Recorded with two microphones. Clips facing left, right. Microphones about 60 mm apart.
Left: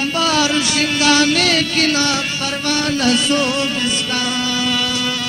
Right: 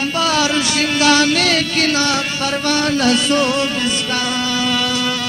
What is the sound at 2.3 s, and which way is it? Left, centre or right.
Music, right.